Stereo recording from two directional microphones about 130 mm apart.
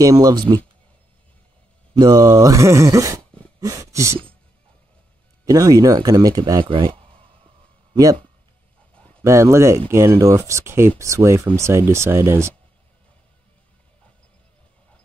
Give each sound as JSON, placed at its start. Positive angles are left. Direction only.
{"t": 0.0, "sound": "speech", "side_deg": -30}
{"t": 2.0, "sound": "speech", "side_deg": -30}
{"t": 5.4, "sound": "speech", "side_deg": -25}
{"t": 7.9, "sound": "speech", "side_deg": -25}
{"t": 8.9, "sound": "a sound", "side_deg": 10}
{"t": 9.2, "sound": "speech", "side_deg": -20}